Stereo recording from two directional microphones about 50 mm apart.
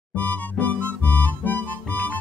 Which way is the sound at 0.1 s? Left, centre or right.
Left.